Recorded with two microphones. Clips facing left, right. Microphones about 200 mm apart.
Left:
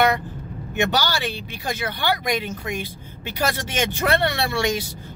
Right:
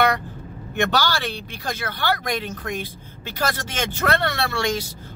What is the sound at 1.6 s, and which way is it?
Speech, 15° left (ahead or behind).